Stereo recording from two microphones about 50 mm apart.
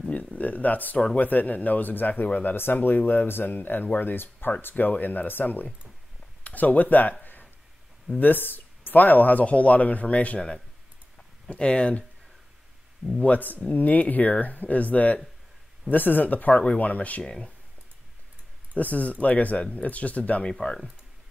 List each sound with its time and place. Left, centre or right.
0.1 s speech: left
2.5 s speech: left
8.2 s speech: left
13.2 s speech: left
18.8 s speech: left
20.5 s speech: centre